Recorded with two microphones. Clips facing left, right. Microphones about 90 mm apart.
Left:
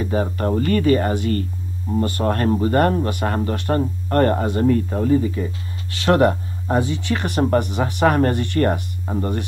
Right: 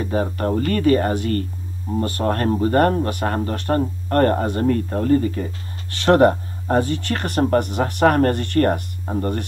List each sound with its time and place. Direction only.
0.0 s speech: 40° right (ahead or behind)